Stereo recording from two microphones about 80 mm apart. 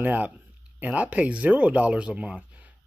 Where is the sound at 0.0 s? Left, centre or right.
Right.